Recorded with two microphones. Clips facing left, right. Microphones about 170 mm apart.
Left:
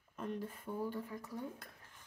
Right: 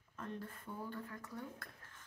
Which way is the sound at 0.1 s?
15° left (ahead or behind).